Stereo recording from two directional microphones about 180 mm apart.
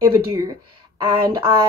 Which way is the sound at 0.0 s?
20° right (ahead or behind).